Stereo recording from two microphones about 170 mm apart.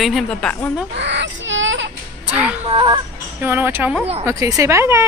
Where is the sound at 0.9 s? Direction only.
90° right.